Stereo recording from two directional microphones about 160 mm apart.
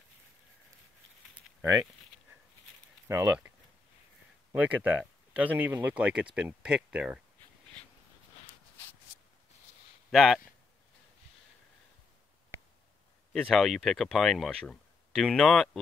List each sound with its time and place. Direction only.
3.1 s speech: 20° right (ahead or behind)
4.5 s speech: 10° right (ahead or behind)
10.1 s speech: centre (ahead or behind)
13.3 s speech: centre (ahead or behind)